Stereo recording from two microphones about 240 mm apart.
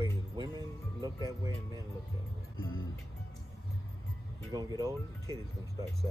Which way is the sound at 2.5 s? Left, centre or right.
Left.